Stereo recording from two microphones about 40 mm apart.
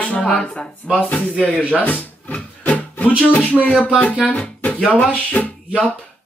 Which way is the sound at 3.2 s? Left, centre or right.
Left.